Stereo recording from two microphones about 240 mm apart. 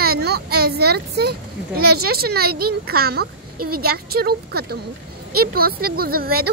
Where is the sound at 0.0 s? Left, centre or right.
Right.